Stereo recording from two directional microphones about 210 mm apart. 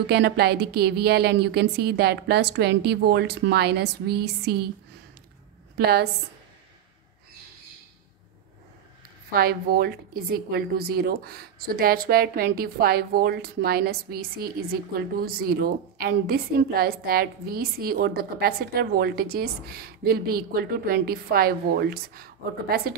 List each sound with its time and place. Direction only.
0.0 s a woman's voice: 50° right (ahead or behind)
5.8 s a woman's voice: 50° right (ahead or behind)
9.3 s a woman's voice: 45° right (ahead or behind)